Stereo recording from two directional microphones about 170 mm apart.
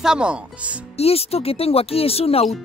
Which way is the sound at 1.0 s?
35° left (ahead or behind).